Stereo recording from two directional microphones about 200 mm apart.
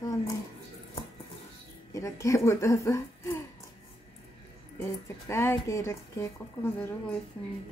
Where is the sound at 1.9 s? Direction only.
15° left (ahead or behind).